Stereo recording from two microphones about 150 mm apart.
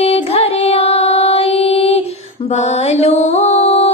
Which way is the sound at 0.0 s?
40° left (ahead or behind).